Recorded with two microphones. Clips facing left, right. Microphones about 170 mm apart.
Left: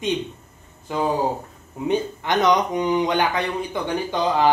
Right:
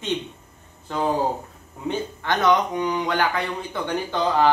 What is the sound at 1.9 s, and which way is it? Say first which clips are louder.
A man's voice: left 3 dB; 20° left (ahead or behind).